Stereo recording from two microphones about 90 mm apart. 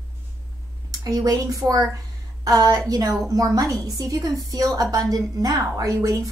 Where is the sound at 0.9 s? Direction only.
45° right (ahead or behind).